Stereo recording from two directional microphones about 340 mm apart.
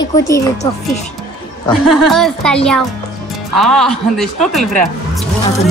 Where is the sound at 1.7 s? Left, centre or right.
Centre.